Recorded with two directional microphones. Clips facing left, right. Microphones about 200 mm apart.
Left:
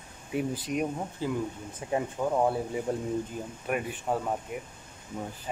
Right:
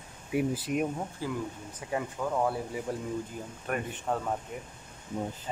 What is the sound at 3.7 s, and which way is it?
Speech, 10° left (ahead or behind).